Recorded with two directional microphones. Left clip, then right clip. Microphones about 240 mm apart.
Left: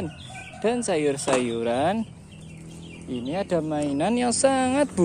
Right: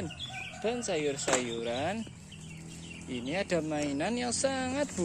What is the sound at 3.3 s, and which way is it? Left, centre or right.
Speech, centre.